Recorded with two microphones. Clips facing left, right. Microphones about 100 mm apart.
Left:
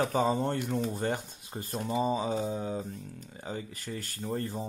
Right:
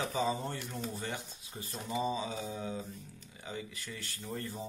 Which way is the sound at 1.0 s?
50° left (ahead or behind).